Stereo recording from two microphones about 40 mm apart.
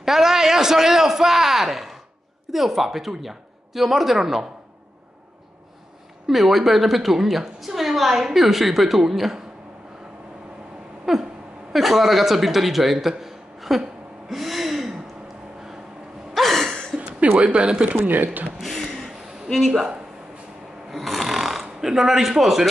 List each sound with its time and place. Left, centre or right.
0.0 s a sound: centre
2.5 s a woman's voice: centre
6.2 s a woman's voice: centre
11.1 s a sound: centre
11.7 s a woman's voice: centre
14.3 s gasp: centre
16.3 s gasp: centre
16.9 s a sound: right
17.4 s speech: right
17.9 s speech: right
18.6 s a sound: centre
20.9 s speech: centre